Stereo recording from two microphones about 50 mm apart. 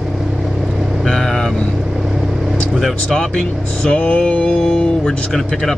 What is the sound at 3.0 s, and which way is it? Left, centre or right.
Speech, centre.